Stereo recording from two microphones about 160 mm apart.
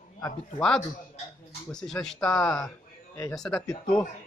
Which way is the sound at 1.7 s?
5° left (ahead or behind).